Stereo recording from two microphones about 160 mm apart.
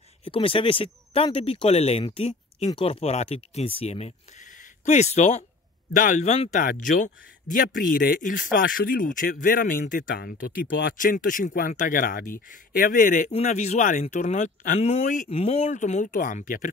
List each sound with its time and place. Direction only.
0.2 s speech: 35° left (ahead or behind)
6.6 s speech: 60° left (ahead or behind)
10.1 s speech: 80° left; by 13.3 s 55° left (ahead or behind)
13.3 s speech: 45° left (ahead or behind)
14.8 s speech: 45° left (ahead or behind)